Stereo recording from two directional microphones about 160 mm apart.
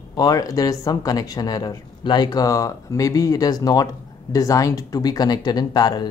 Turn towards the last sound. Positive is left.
turn(degrees=25)  # may be behind; listen again after turning